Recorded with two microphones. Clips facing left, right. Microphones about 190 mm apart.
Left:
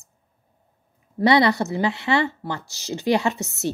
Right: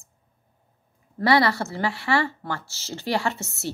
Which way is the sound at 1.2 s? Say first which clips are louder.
Left 3 dB; 20° left (ahead or behind).